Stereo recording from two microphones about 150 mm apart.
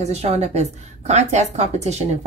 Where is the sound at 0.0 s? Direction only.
45° right (ahead or behind).